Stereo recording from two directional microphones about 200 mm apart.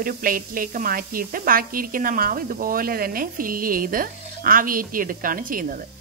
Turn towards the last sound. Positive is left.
turn(degrees=-45)  # may be behind; listen again after turning